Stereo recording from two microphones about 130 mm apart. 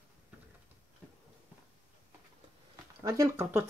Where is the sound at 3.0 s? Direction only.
25° right (ahead or behind).